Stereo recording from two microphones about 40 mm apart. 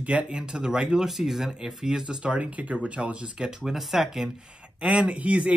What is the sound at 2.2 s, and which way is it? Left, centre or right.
Speech, right.